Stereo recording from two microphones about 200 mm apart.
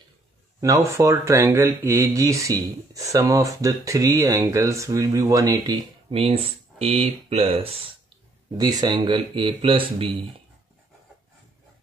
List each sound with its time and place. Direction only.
0.6 s speech: 15° right (ahead or behind)